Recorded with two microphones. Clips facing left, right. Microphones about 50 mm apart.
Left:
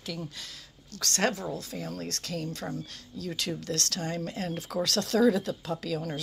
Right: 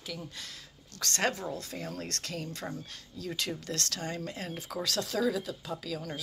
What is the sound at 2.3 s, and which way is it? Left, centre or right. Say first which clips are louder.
Speech: left 5 dB; right.